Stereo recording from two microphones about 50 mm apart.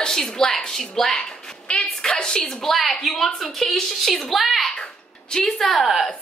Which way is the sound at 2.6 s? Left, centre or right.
Centre.